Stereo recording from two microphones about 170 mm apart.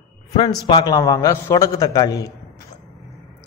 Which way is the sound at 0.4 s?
25° left (ahead or behind).